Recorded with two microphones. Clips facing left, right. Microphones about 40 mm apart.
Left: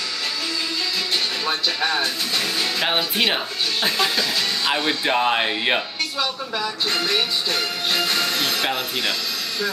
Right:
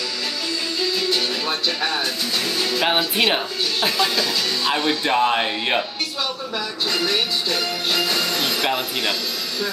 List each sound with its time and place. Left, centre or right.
2.9 s speech: centre
4.8 s speech: centre